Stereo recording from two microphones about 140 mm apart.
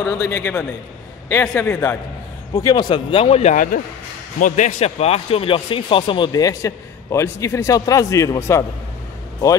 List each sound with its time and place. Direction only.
0.0 s a man's voice: 20° left (ahead or behind)
2.6 s speech: 30° left (ahead or behind); by 3.5 s 45° left (ahead or behind)
3.5 s speech: 75° left (ahead or behind)
4.7 s speech: 50° left (ahead or behind); by 8.6 s 20° left (ahead or behind)